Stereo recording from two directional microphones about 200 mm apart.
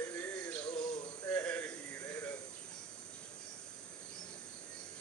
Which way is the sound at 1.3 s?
10° left (ahead or behind).